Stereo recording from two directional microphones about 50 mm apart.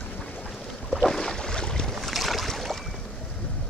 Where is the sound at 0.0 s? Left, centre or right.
Left.